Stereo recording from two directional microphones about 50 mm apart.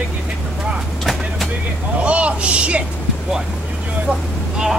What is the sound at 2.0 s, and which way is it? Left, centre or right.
Vehicle, right.